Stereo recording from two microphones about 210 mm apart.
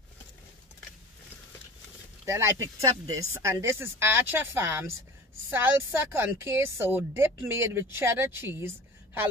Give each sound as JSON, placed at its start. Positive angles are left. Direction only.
{"t": 2.2, "sound": "a woman's voice", "side_deg": -15}